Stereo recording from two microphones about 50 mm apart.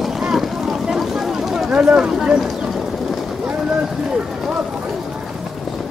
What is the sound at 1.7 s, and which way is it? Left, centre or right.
Speech, centre.